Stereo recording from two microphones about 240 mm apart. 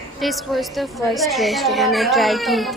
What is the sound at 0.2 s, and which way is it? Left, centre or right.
A child's voice, centre.